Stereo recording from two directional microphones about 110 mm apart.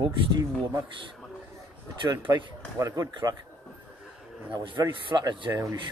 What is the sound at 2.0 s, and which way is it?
Speech, 35° right (ahead or behind).